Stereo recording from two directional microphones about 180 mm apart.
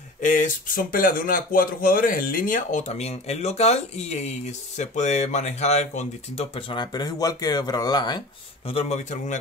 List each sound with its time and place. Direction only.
0.2 s speech: 45° left (ahead or behind); by 8.2 s 25° left (ahead or behind)
8.6 s speech: 35° left (ahead or behind)